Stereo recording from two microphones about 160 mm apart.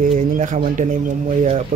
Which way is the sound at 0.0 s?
55° right (ahead or behind).